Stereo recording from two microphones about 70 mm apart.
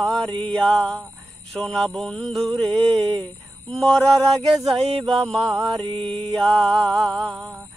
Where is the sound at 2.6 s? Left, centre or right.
Centre.